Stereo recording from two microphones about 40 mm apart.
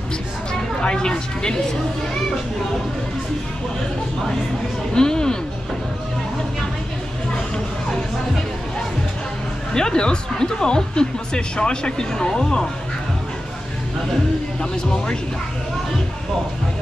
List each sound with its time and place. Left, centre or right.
0.7 s speech: left
4.9 s speech: centre
9.8 s speech: centre
14.6 s speech: left